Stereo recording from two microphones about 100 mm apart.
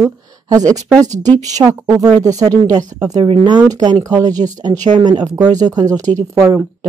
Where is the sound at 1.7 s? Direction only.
35° right (ahead or behind).